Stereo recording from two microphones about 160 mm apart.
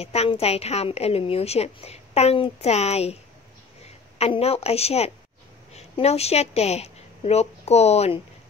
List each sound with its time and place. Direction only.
0.0 s a woman's voice: 40° left (ahead or behind)